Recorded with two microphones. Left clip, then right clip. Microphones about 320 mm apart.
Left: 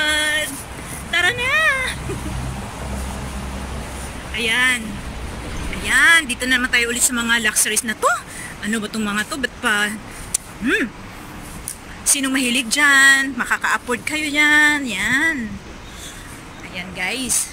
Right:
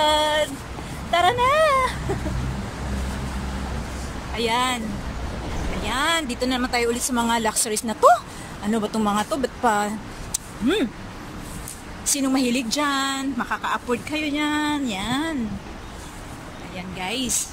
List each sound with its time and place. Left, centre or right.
0.0 s a sound: centre
4.4 s a woman's voice: centre
5.9 s a woman's voice: centre
12.1 s a woman's voice: centre
16.7 s speech: centre